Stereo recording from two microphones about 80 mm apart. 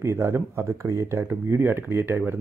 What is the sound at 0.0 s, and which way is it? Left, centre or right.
Speech, right.